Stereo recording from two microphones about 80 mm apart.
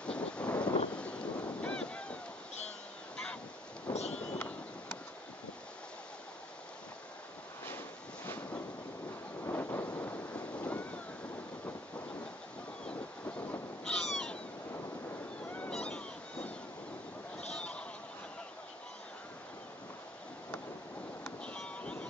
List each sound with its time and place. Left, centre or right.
0.0 s wind noise: centre
4.1 s vehicle: centre
9.4 s a sound: left
9.8 s waves: centre
12.8 s honk: centre
14.0 s owl: centre
15.4 s a sound: centre
21.5 s vehicle: centre